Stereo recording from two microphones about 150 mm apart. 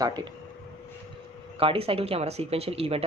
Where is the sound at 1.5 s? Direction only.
40° right (ahead or behind).